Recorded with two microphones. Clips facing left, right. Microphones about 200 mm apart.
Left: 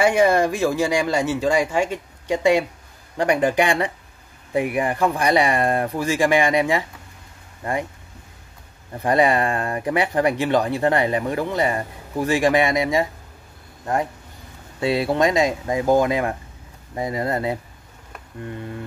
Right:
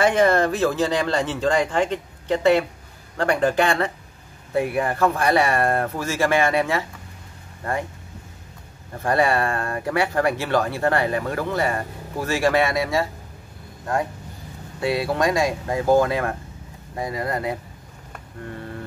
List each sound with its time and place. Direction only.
0.0 s speech: 10° left (ahead or behind)
9.0 s speech: 15° left (ahead or behind)
14.8 s speech: 25° left (ahead or behind)